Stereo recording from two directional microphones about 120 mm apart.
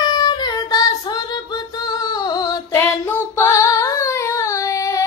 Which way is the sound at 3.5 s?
25° left (ahead or behind).